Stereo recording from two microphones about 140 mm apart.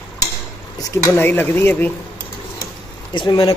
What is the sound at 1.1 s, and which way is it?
Speech, 15° left (ahead or behind).